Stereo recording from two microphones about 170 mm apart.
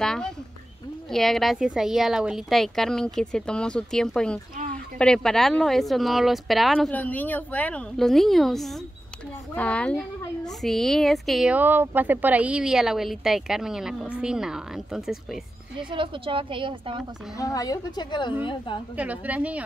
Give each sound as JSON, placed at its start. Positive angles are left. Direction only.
{"t": 0.0, "sound": "a child's voice", "side_deg": 5}
{"t": 15.9, "sound": "a woman's voice", "side_deg": -30}
{"t": 17.4, "sound": "a woman's voice", "side_deg": 20}
{"t": 18.9, "sound": "a woman's voice", "side_deg": -10}